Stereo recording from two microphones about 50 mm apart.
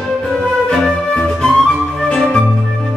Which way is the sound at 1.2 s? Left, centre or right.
Centre.